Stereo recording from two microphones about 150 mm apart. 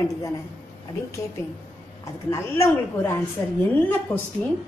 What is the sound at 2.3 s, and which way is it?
Speech, 20° left (ahead or behind).